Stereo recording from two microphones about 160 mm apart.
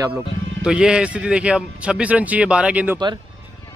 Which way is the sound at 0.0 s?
10° right (ahead or behind).